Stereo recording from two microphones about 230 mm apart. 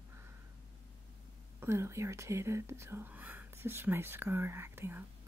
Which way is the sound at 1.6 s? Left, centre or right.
Centre.